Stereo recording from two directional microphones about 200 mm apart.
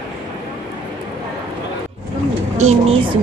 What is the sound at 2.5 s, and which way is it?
Speech, 35° right (ahead or behind).